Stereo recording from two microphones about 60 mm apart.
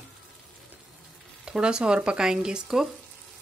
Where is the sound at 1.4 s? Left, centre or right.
Centre.